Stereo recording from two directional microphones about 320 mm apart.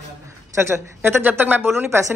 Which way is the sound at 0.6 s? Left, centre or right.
Centre.